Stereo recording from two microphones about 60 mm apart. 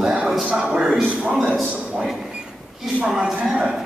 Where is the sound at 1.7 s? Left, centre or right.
Centre.